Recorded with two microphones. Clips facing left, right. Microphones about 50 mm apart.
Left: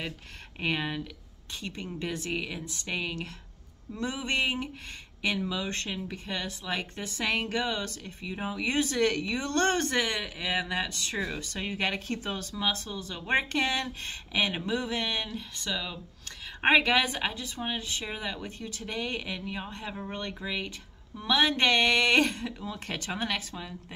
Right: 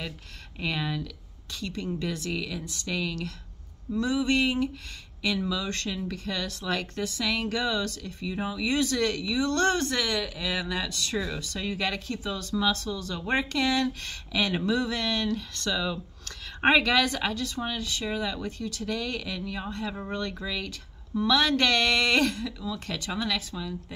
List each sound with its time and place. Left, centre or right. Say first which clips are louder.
0.6 s speech: even; left; by 16.8 s centre
16.8 s speech: right 2 dB; left